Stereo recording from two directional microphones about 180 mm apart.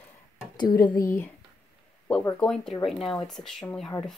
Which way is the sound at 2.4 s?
5° left (ahead or behind).